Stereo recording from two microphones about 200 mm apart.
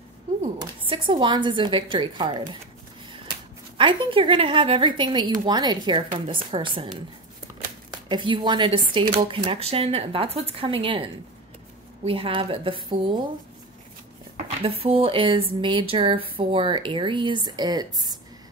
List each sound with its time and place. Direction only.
0.6 s speech: 25° right (ahead or behind)
3.7 s speech: 25° right (ahead or behind)
14.6 s speech: 30° right (ahead or behind)